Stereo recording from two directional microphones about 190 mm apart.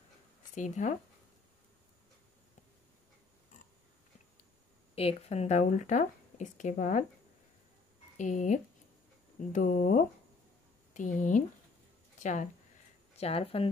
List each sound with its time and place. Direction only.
0.6 s speech: 40° left (ahead or behind)
4.9 s speech: 30° left (ahead or behind)
8.2 s speech: 40° left (ahead or behind)